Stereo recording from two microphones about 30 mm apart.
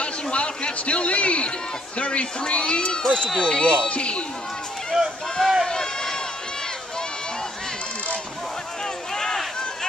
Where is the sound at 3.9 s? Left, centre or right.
Left.